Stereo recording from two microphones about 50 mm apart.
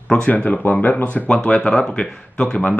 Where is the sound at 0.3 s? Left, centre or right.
Left.